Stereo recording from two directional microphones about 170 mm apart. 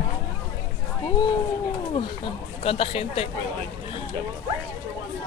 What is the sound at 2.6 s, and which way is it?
Speech, 35° left (ahead or behind).